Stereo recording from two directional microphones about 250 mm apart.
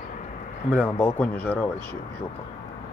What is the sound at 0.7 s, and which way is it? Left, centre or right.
Speech, centre.